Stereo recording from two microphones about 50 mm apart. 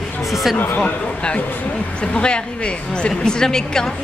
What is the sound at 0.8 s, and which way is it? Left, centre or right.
A woman's voice, left.